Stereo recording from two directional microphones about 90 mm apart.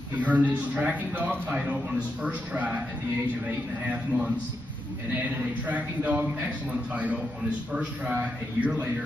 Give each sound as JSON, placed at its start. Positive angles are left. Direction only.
{"t": 0.1, "sound": "a man's voice", "side_deg": -15}
{"t": 5.7, "sound": "a man's voice", "side_deg": -15}